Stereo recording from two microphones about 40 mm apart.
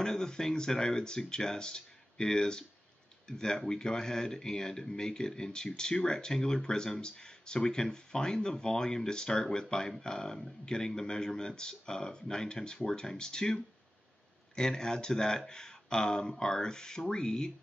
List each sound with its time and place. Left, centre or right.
0.0 s a man's voice: centre